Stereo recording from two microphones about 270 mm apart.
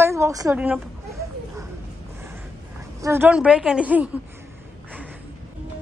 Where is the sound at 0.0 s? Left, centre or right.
Centre.